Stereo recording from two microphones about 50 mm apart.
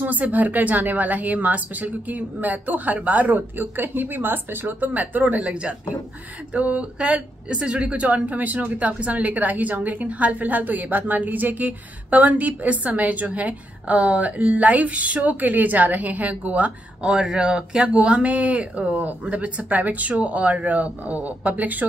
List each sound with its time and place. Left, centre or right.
0.0 s speech: right
17.0 s speech: centre; by 21.8 s right